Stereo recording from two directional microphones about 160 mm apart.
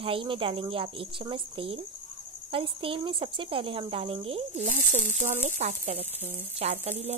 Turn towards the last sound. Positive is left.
turn(degrees=-40)  # may be behind; listen again after turning